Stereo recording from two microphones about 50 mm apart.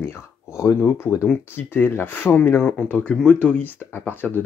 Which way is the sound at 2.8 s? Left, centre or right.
Left.